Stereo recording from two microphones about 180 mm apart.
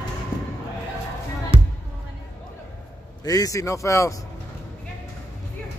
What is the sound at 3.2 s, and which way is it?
Speech, 20° left (ahead or behind).